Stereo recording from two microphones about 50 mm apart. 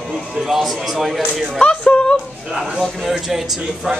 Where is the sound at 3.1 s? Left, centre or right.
Centre.